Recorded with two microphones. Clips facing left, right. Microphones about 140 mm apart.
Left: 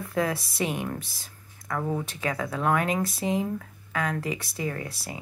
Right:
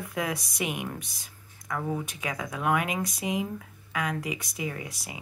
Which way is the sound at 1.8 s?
20° left (ahead or behind).